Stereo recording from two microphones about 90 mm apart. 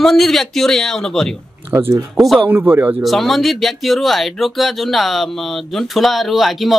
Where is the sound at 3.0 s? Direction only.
Centre (ahead or behind).